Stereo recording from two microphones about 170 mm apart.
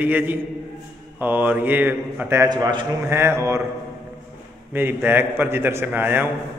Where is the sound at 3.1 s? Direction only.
15° right (ahead or behind).